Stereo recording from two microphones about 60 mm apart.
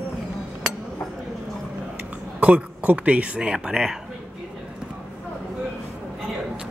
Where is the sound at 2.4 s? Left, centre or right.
Right; by 4.0 s centre.